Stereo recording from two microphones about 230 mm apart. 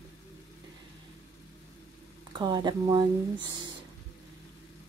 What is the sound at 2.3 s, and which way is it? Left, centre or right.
Speech, centre.